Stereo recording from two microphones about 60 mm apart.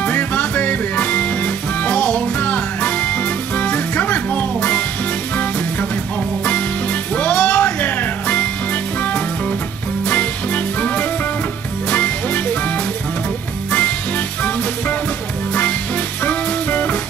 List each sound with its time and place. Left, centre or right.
0.0 s music: left
7.2 s music: left
10.0 s music: left
13.7 s music: centre
16.3 s music: left